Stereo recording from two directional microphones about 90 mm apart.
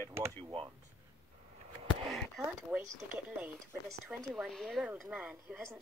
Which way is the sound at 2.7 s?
15° right (ahead or behind).